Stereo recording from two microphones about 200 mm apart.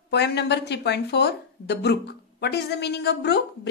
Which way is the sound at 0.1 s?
60° left (ahead or behind).